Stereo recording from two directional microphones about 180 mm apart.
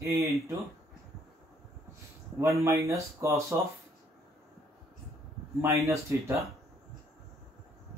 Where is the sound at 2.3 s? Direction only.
15° right (ahead or behind).